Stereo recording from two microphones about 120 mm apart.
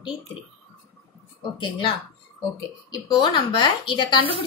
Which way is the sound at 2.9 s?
35° left (ahead or behind).